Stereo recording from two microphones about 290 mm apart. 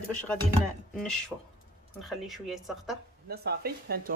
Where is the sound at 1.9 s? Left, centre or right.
Centre.